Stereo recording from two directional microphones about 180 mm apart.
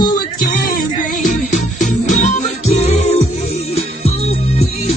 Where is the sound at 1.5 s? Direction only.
40° left (ahead or behind).